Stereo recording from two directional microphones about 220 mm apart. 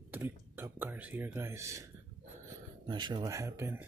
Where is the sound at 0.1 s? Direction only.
10° right (ahead or behind).